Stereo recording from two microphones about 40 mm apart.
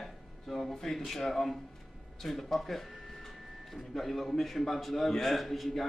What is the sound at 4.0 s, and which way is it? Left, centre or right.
A man's voice, centre.